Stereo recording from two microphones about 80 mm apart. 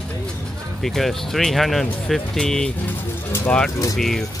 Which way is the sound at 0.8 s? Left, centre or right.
Centre.